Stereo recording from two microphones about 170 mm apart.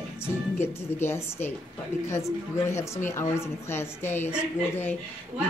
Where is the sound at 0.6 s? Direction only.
15° left (ahead or behind).